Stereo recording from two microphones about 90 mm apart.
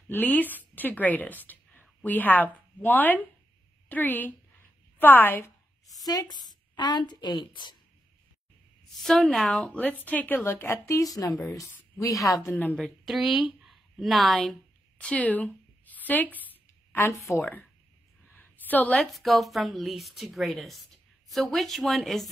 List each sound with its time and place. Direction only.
0.1 s a woman's voice: 20° left (ahead or behind)
5.9 s a woman's voice: 45° left (ahead or behind)
8.9 s speech: 5° left (ahead or behind)
10.0 s a woman's voice: 20° left (ahead or behind)
12.4 s a woman's voice: 20° left (ahead or behind)
12.7 s speech: centre (ahead or behind); by 16.3 s 20° left (ahead or behind)
16.4 s a sound: 20° left (ahead or behind)
17.4 s a woman's voice: 20° left (ahead or behind)
18.3 s a sound: 20° left (ahead or behind)
19.0 s speech: centre (ahead or behind)